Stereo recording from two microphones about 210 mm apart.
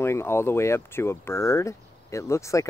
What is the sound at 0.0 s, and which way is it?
Speech, 10° left (ahead or behind).